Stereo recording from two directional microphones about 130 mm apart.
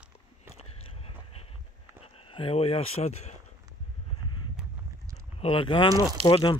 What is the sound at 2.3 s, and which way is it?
Speech, 45° left (ahead or behind).